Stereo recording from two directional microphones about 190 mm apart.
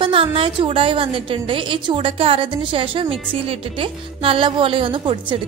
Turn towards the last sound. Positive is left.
turn(degrees=-25)  # may be behind; listen again after turning